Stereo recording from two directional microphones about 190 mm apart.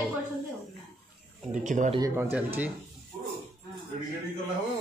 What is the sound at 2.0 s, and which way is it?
Speech, 15° right (ahead or behind).